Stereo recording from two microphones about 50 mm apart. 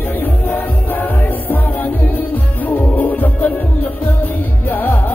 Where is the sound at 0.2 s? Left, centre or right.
Left.